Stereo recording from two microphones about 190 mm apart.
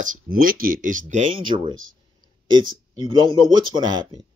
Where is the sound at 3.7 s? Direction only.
25° right (ahead or behind).